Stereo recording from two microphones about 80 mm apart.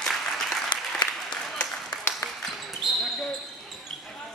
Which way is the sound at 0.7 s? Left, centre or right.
Left.